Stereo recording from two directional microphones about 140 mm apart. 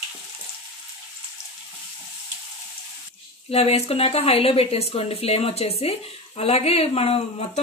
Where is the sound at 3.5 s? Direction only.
45° left (ahead or behind).